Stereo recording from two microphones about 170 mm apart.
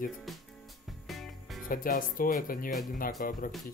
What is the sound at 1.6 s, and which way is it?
Speech, 55° left (ahead or behind).